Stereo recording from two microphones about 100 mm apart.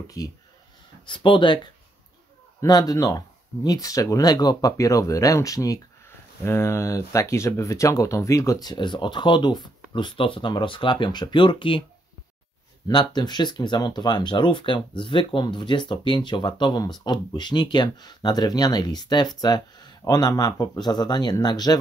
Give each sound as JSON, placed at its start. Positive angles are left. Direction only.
{"t": 0.2, "sound": "speech", "side_deg": 35}
{"t": 1.0, "sound": "speech", "side_deg": 55}
{"t": 2.6, "sound": "speech", "side_deg": 40}
{"t": 8.7, "sound": "speech", "side_deg": 50}
{"t": 9.9, "sound": "speech", "side_deg": 55}
{"t": 12.8, "sound": "speech", "side_deg": 50}